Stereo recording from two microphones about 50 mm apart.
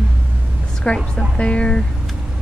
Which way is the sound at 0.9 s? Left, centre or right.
Centre.